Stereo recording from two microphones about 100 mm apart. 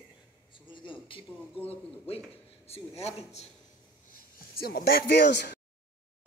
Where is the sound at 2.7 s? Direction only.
90° left.